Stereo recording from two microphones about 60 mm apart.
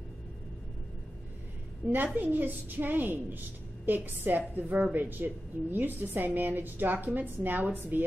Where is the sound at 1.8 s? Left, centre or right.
Right.